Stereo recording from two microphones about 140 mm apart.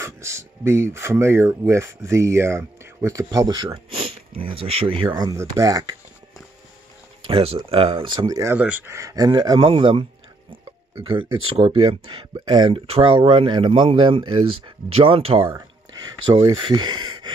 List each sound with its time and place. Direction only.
0.0 s speech: 20° right (ahead or behind)
7.2 s speech: 40° right (ahead or behind)
8.5 s speech: 10° right (ahead or behind); by 10.0 s 40° right (ahead or behind)
11.1 s speech: 35° right (ahead or behind)
15.4 s speech: 25° right (ahead or behind)